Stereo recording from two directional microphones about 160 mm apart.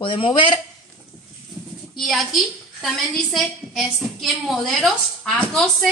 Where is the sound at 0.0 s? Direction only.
35° left (ahead or behind).